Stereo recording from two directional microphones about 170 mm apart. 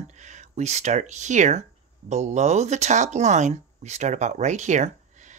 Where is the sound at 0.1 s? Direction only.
45° right (ahead or behind).